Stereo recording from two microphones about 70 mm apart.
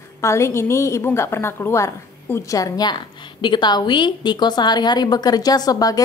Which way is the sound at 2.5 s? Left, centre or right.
Left.